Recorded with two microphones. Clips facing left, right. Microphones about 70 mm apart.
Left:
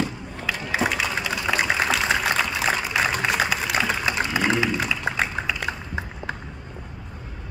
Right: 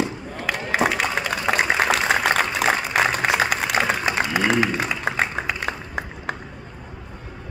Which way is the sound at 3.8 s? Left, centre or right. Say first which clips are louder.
Right 2 dB; right.